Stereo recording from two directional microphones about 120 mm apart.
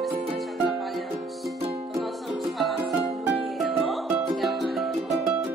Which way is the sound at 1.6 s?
55° right (ahead or behind).